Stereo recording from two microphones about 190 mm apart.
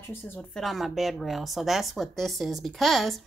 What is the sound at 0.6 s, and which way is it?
Speech, centre (ahead or behind).